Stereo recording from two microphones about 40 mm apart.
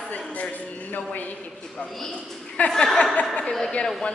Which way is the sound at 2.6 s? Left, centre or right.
Left.